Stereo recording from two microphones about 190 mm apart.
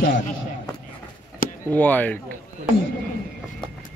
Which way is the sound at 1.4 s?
50° left (ahead or behind).